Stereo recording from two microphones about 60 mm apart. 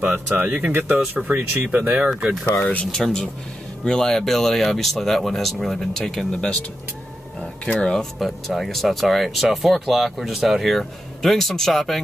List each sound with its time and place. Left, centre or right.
0.0 s speech: right
2.8 s speech: centre
7.6 s speech: centre